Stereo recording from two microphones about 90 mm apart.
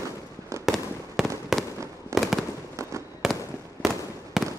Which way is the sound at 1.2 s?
Centre (ahead or behind).